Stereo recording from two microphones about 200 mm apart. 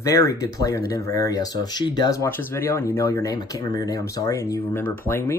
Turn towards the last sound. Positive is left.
turn(degrees=10)  # may be behind; listen again after turning